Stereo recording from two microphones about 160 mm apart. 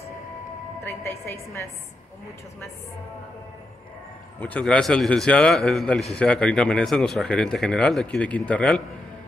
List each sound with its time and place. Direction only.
0.8 s a woman's voice: 15° left (ahead or behind)
4.4 s a man's voice: 5° left (ahead or behind)